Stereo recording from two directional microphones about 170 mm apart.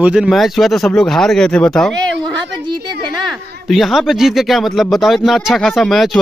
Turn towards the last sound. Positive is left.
turn(degrees=0)  # may be behind; listen again after turning